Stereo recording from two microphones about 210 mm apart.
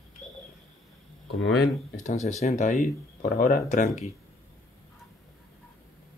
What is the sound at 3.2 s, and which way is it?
Speech, 45° left (ahead or behind).